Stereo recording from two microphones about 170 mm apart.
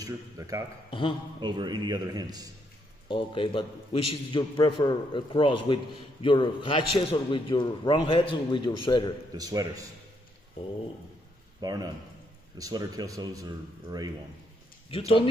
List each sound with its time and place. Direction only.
0.0 s a man's voice: 20° right (ahead or behind)
0.8 s a man's voice: 30° left (ahead or behind)
1.4 s speech: 25° right (ahead or behind)
3.1 s a man's voice: 30° left (ahead or behind)
9.3 s speech: 20° right (ahead or behind)
11.6 s speech: 25° right (ahead or behind)
14.9 s a man's voice: 35° left (ahead or behind)